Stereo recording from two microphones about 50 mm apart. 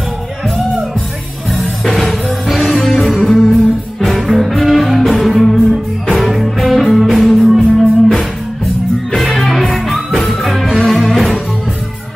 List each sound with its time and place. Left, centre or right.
1.6 s music: centre